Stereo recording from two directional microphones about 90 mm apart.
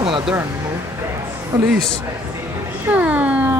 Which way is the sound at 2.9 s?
15° right (ahead or behind).